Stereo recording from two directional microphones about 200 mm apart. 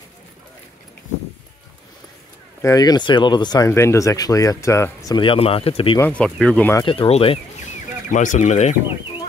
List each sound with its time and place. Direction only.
2.6 s speech: 20° left (ahead or behind)
5.9 s speech: 5° left (ahead or behind)
6.8 s speech: 25° left (ahead or behind)
8.1 s speech: 40° left (ahead or behind)